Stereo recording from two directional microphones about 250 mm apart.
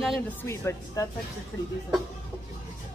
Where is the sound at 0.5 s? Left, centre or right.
Centre.